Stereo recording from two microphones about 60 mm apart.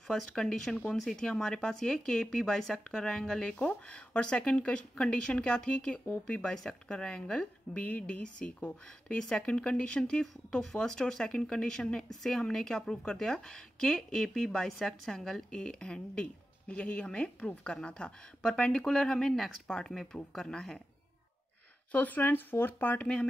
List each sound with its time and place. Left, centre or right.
0.1 s a woman's voice: centre
21.9 s speech: left